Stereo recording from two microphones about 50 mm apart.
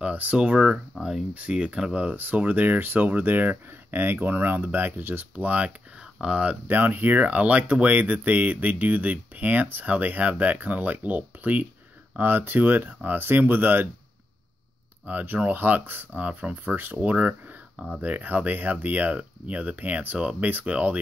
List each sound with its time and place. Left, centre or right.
0.0 s speech: right
0.4 s speech: centre
2.1 s speech: right
5.3 s speech: right
6.7 s speech: right
15.0 s speech: right
16.2 s speech: right
16.6 s speech: right